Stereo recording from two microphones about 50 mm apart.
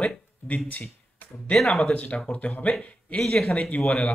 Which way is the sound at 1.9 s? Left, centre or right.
Left.